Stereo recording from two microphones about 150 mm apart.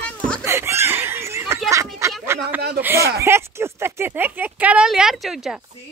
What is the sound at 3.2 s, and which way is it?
Speech, 15° right (ahead or behind).